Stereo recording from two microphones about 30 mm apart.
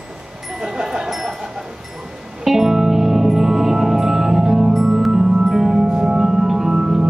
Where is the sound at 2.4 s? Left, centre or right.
Centre.